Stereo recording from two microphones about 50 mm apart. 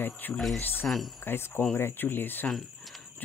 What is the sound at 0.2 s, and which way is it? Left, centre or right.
Speech, left.